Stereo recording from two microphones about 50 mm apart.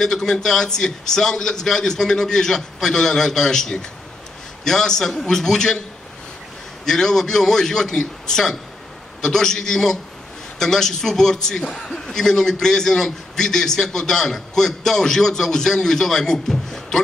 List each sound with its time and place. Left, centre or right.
0.0 s a man's voice: centre
6.9 s a man's voice: centre